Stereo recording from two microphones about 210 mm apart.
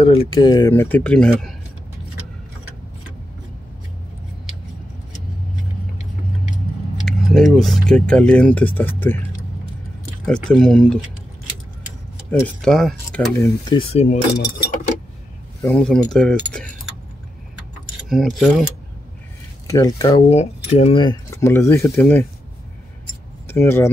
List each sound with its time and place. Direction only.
0.0 s keys jangling: 25° left (ahead or behind); by 1.5 s 5° left (ahead or behind)
7.1 s speech: centre (ahead or behind)
10.2 s speech: 5° left (ahead or behind)
12.3 s speech: 5° left (ahead or behind)
13.4 s speech: 20° left (ahead or behind)
14.3 s speech: 40° left (ahead or behind)
15.6 s speech: 5° left (ahead or behind)
18.1 s speech: centre (ahead or behind)
19.7 s keys jangling: 15° left (ahead or behind)
23.5 s keys jangling: 10° left (ahead or behind)